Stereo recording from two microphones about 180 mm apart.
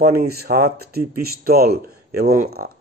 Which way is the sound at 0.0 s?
60° right (ahead or behind).